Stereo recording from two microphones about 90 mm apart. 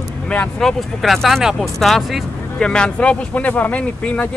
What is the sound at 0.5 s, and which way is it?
Speech, centre (ahead or behind).